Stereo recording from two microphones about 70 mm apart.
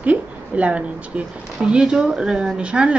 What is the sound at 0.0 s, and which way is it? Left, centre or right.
A woman's voice, centre.